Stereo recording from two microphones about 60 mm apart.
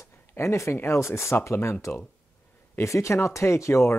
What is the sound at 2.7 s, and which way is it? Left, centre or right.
Speech, left.